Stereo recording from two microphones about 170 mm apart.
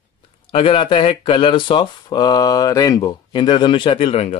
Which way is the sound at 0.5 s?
30° left (ahead or behind).